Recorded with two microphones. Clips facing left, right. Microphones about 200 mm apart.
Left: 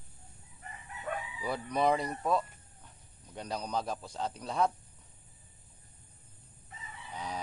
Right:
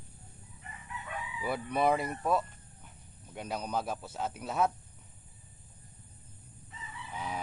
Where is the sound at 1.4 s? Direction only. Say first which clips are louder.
Even; 5° right (ahead or behind).